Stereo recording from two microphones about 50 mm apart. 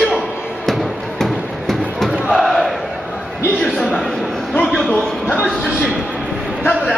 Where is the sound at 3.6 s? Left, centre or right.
Centre.